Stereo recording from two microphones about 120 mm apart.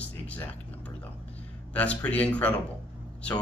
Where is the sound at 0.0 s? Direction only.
10° left (ahead or behind).